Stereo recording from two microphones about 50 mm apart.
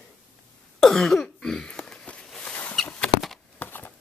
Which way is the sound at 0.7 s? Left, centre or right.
Centre.